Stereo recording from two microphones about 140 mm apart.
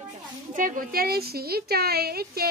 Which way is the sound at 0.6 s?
80° right.